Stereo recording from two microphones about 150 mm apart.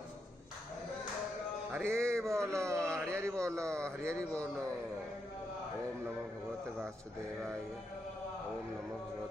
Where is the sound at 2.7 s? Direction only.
5° left (ahead or behind).